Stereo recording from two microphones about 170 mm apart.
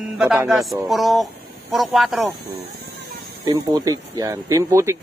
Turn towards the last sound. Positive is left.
turn(degrees=-15)  # may be behind; listen again after turning